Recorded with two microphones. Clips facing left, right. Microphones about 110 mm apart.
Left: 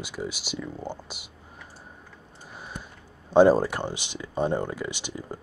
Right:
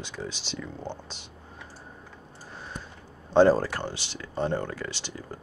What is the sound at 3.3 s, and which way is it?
Speech, 15° left (ahead or behind).